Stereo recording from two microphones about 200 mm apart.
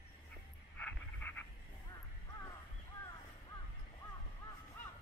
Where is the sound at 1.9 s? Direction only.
20° left (ahead or behind).